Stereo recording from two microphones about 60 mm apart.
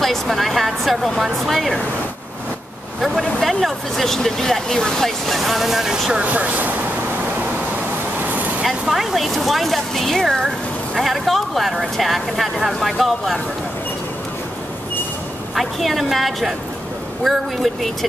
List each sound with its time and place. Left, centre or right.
0.0 s speech: centre
3.0 s speech: centre
6.2 s speech: right
8.2 s vehicle: right
8.6 s speech: centre
15.5 s speech: centre